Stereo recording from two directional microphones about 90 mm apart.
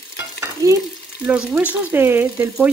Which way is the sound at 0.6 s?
45° right (ahead or behind).